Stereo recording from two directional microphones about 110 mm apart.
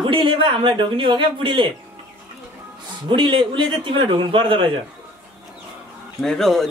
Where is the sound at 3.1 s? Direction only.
50° right (ahead or behind).